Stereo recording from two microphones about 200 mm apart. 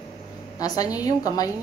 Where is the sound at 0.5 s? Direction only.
20° left (ahead or behind).